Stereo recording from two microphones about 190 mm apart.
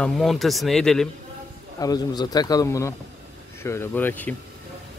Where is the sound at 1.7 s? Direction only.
20° left (ahead or behind).